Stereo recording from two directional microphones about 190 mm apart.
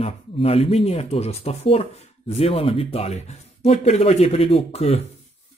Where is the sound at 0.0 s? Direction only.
30° left (ahead or behind).